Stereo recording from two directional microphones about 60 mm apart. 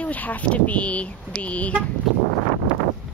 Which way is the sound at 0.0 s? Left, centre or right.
Left.